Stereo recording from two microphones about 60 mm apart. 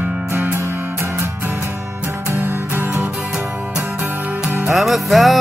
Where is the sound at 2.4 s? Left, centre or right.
Right.